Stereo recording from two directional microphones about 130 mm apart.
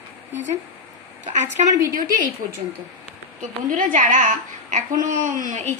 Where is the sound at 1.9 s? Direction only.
90° right.